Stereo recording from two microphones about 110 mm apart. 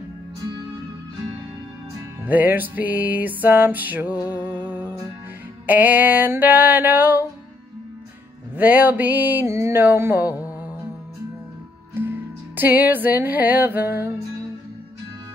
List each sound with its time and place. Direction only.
2.2 s music: 15° right (ahead or behind)
8.5 s music: 15° right (ahead or behind)
11.9 s music: 20° right (ahead or behind)